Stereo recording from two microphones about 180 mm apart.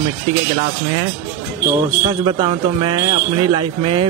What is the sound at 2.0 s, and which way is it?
A man's voice, 25° right (ahead or behind).